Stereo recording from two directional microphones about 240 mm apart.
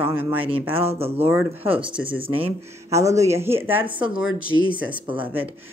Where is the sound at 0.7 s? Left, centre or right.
Right.